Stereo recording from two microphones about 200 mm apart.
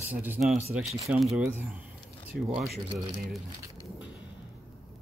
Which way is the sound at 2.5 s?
5° right (ahead or behind).